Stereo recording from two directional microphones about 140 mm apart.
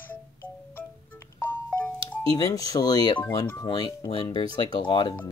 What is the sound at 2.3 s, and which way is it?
Speech, 25° left (ahead or behind).